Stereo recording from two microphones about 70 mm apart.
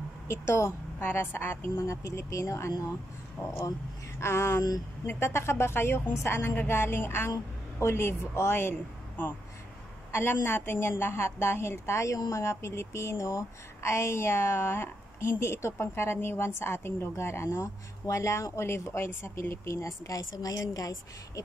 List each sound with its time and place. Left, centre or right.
0.3 s speech: left
4.2 s speech: left
20.1 s a woman's voice: left